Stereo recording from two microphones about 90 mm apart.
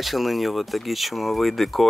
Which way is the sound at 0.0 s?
Centre (ahead or behind).